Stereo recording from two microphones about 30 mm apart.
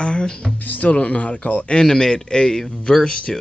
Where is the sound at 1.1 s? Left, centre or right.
Left.